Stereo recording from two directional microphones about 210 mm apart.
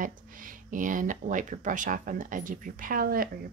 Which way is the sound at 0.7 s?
40° right (ahead or behind).